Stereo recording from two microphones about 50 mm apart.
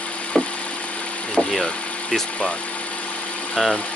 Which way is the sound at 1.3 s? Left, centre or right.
Centre.